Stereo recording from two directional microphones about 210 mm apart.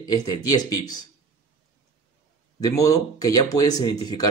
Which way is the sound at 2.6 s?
15° left (ahead or behind).